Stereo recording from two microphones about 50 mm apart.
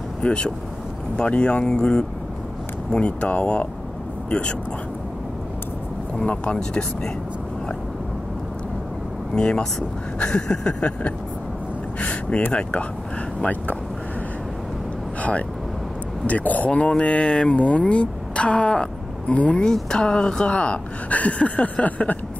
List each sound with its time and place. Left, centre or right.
0.2 s a woman's voice: left
6.1 s a woman's voice: centre
9.3 s speech: centre
12.0 s a sound: left
13.4 s speech: left
16.3 s a woman's voice: left
19.6 s a woman's voice: centre; by 22.2 s left